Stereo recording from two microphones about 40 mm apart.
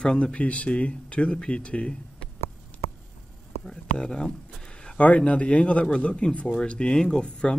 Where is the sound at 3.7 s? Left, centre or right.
Left.